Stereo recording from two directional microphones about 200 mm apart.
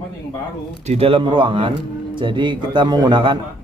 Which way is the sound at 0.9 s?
30° right (ahead or behind).